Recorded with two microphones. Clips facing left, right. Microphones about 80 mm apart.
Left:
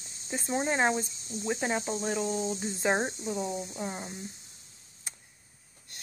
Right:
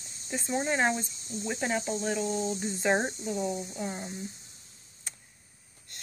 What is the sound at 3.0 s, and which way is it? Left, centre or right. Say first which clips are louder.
Speech: even; centre.